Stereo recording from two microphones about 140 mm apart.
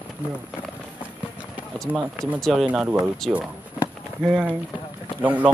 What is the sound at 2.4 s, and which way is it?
A man's voice, centre (ahead or behind).